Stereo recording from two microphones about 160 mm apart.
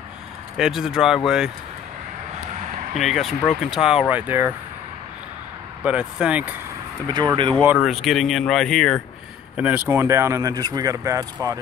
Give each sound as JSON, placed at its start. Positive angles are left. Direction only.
{"t": 0.6, "sound": "speech", "side_deg": 0}
{"t": 3.0, "sound": "speech", "side_deg": 0}
{"t": 5.9, "sound": "speech", "side_deg": -5}
{"t": 7.1, "sound": "speech", "side_deg": -25}
{"t": 7.6, "sound": "speech", "side_deg": -5}
{"t": 9.6, "sound": "speech", "side_deg": -10}